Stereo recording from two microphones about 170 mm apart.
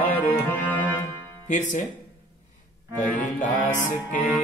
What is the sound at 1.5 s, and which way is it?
Speech, 45° left (ahead or behind).